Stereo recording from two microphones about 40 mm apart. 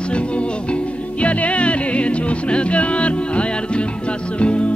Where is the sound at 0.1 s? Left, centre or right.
Left.